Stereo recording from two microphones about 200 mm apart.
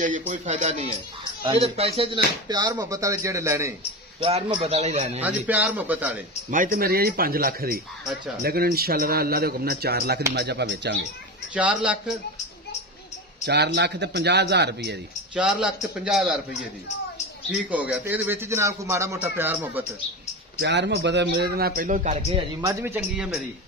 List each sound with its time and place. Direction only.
0.3 s a man's voice: 35° right (ahead or behind); by 3.7 s 15° right (ahead or behind)
4.2 s a man's voice: 25° right (ahead or behind)
5.2 s speech: 10° right (ahead or behind)
6.5 s a man's voice: 45° right (ahead or behind)
11.5 s speech: 5° right (ahead or behind)
13.5 s a man's voice: 55° right (ahead or behind)
15.3 s a man's voice: 5° right (ahead or behind)
17.6 s speech: 5° right (ahead or behind)
20.5 s a man's voice: 60° right (ahead or behind); by 22.4 s 30° right (ahead or behind)
22.7 s speech: 15° right (ahead or behind)